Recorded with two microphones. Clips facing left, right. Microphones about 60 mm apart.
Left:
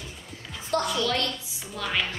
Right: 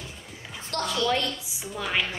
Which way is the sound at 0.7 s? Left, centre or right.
Centre.